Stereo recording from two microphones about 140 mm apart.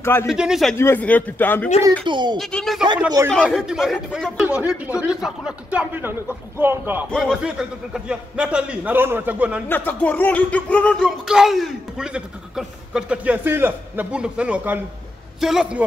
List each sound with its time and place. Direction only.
0.0 s speech: 20° left (ahead or behind)
0.3 s speech: 5° right (ahead or behind)
0.7 s speech: 15° left (ahead or behind)
2.0 s speech: 35° right (ahead or behind)
2.3 s a man's voice: centre (ahead or behind); by 7.1 s 15° right (ahead or behind)
7.1 s a man's voice: centre (ahead or behind)
9.7 s speech: 15° left (ahead or behind)
11.1 s a man's voice: 5° right (ahead or behind)